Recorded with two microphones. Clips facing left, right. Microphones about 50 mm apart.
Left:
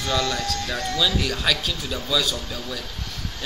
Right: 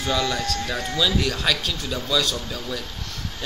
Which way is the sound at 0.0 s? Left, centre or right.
Centre.